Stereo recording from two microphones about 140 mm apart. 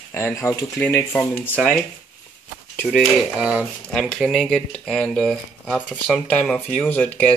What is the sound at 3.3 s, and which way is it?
Speech, 10° right (ahead or behind).